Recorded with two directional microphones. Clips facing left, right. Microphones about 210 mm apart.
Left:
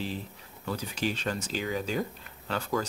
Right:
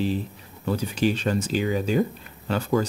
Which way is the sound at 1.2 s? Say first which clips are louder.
Right 8 dB; 15° right (ahead or behind).